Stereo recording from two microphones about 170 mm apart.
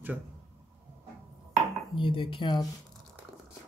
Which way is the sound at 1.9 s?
30° left (ahead or behind).